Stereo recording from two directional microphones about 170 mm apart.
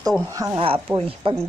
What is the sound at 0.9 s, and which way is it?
Speech, 35° right (ahead or behind).